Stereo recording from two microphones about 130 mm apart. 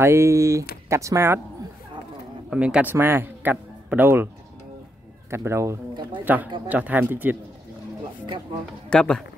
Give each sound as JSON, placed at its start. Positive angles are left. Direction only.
{"t": 0.0, "sound": "speech", "side_deg": -20}
{"t": 2.5, "sound": "a man's voice", "side_deg": -10}
{"t": 5.3, "sound": "speech", "side_deg": -20}
{"t": 8.9, "sound": "speech", "side_deg": 5}